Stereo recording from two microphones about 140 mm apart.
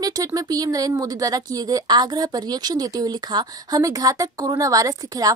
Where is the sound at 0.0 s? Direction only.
25° right (ahead or behind).